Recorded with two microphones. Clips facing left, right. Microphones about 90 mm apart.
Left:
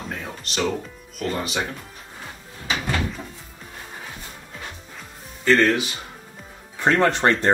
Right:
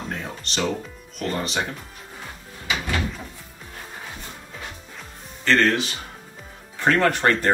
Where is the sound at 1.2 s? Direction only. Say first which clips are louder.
Even; centre (ahead or behind).